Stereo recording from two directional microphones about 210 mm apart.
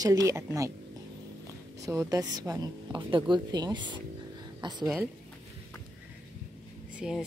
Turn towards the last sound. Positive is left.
turn(degrees=-5)  # may be behind; listen again after turning